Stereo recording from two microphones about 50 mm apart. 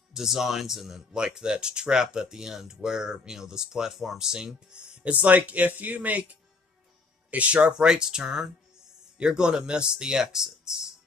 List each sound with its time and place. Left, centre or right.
0.1 s speech: centre
5.1 s speech: right
7.2 s speech: right; by 10.8 s centre